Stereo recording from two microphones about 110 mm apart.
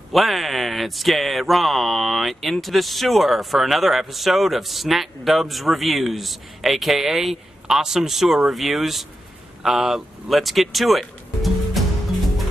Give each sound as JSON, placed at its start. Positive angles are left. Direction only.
{"t": 0.1, "sound": "speech", "side_deg": 0}